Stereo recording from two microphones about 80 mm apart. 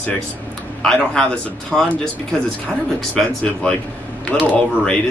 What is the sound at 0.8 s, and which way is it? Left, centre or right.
Speech, centre.